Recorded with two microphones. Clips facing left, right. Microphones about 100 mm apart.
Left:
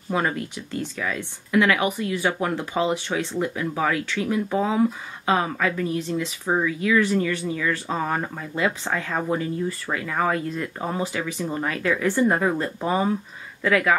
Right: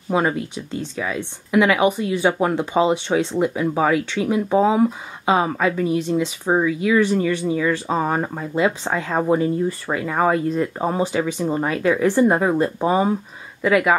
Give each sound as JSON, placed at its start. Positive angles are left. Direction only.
{"t": 0.1, "sound": "speech", "side_deg": -20}